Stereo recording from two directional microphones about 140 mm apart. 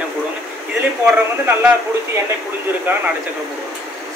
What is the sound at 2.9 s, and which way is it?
Speech, 15° right (ahead or behind).